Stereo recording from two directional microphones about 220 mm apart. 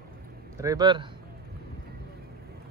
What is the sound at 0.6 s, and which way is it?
Speech, 15° right (ahead or behind).